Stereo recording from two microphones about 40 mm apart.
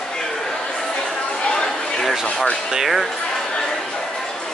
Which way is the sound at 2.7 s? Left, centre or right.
Centre.